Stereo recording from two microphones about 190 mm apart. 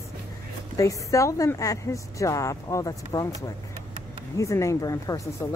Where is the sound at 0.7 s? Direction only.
15° left (ahead or behind).